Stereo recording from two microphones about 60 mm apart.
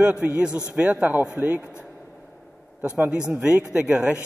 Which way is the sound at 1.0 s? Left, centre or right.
Right.